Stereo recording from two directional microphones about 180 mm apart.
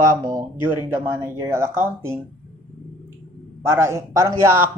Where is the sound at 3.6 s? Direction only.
15° right (ahead or behind).